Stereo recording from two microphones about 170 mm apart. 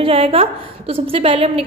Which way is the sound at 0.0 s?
35° right (ahead or behind).